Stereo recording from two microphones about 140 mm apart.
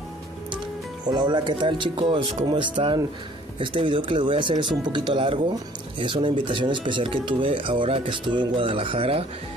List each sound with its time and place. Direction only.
1.0 s speech: 30° right (ahead or behind)